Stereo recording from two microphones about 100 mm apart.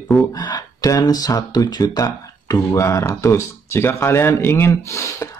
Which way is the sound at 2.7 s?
30° left (ahead or behind).